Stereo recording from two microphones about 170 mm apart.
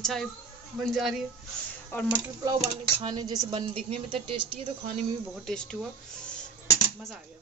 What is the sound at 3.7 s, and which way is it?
Speech, 35° right (ahead or behind).